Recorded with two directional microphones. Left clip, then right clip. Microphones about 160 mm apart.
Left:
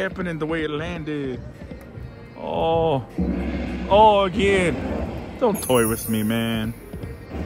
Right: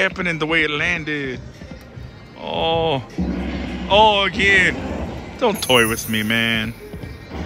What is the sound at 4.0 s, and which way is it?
Speech, 15° left (ahead or behind).